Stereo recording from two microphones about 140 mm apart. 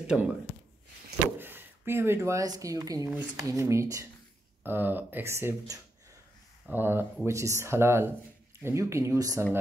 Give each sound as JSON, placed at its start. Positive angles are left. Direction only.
{"t": 0.0, "sound": "speech", "side_deg": -5}
{"t": 1.4, "sound": "speech", "side_deg": -15}
{"t": 3.1, "sound": "speech", "side_deg": -10}
{"t": 3.4, "sound": "speech", "side_deg": -20}